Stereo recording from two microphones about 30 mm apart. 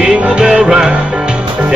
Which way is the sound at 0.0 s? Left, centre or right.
Right.